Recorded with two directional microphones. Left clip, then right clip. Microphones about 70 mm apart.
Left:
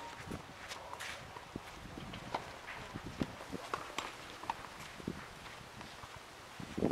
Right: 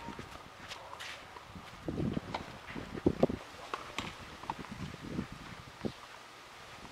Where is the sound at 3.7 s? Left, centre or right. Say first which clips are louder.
Even; centre.